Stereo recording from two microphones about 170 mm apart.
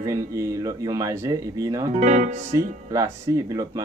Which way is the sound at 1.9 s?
45° right (ahead or behind).